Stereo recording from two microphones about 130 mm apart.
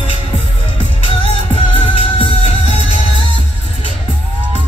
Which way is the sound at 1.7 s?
50° left (ahead or behind).